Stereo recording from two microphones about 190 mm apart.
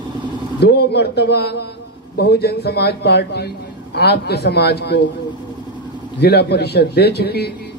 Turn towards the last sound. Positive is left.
turn(degrees=60)  # may be behind; listen again after turning